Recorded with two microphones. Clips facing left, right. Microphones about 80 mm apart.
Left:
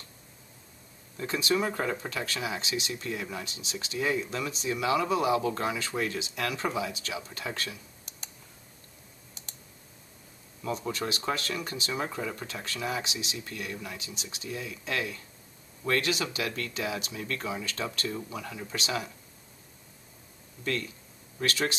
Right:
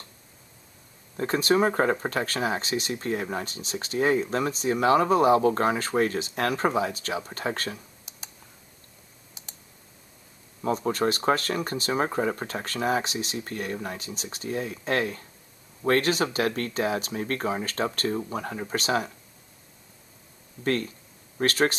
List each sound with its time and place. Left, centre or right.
1.1 s speech: right
10.6 s speech: right
20.6 s speech: right